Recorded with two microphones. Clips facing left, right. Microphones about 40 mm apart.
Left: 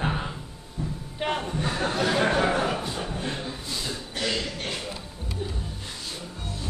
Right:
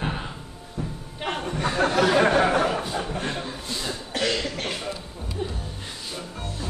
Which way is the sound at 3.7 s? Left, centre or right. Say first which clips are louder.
Right 2 dB; right.